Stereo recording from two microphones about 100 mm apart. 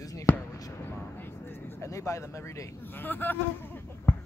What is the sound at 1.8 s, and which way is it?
Speech, 30° left (ahead or behind).